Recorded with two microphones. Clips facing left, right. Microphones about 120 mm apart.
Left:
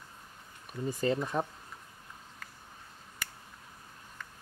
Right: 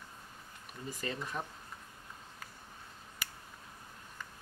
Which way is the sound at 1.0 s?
35° left (ahead or behind).